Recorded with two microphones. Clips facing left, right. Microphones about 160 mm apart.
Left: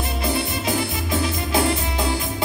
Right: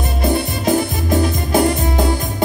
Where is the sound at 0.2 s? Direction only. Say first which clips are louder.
Right 7 dB; 45° right (ahead or behind).